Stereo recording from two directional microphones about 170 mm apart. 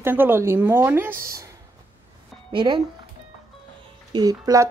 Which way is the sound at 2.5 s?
30° right (ahead or behind).